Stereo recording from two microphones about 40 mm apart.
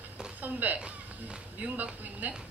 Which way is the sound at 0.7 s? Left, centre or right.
Right.